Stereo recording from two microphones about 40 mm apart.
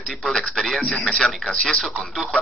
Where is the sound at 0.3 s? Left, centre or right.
Centre.